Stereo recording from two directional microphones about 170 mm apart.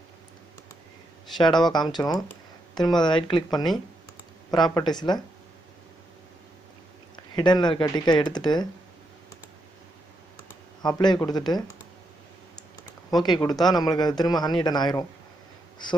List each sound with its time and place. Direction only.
1.6 s speech: 25° left (ahead or behind)
4.5 s speech: 25° left (ahead or behind)
7.3 s speech: 25° left (ahead or behind)
10.8 s speech: 25° left (ahead or behind)
13.1 s speech: 25° left (ahead or behind)